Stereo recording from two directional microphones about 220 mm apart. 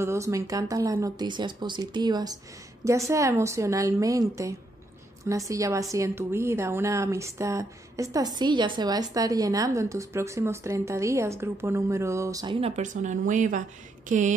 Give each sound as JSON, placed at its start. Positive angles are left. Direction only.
{"t": 0.0, "sound": "a woman's voice", "side_deg": -15}